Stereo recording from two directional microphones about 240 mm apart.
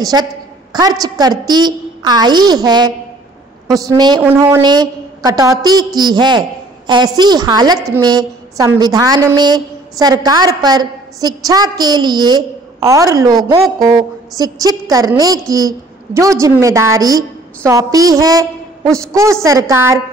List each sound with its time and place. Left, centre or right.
0.0 s a woman's voice: centre